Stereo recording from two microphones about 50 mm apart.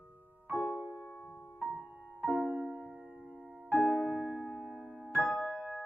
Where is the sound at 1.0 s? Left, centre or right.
Left.